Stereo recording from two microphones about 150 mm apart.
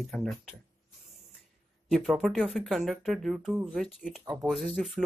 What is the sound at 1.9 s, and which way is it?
Speech, centre (ahead or behind).